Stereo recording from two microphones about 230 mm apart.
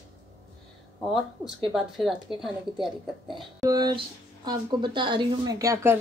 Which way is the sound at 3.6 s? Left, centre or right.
Centre.